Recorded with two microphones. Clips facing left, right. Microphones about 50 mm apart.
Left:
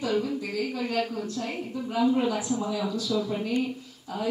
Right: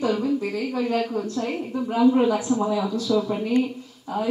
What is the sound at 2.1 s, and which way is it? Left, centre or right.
Speech, right.